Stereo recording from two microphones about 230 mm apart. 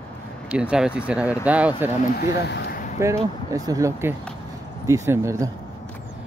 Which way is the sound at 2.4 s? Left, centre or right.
Left.